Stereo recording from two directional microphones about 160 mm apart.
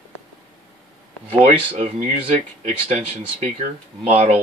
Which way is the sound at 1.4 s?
45° right (ahead or behind).